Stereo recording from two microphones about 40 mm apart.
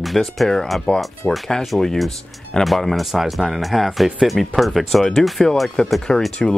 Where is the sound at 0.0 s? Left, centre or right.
Centre.